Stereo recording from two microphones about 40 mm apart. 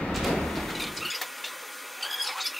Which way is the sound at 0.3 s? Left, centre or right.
Centre.